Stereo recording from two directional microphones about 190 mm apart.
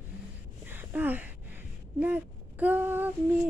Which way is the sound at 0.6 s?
10° right (ahead or behind).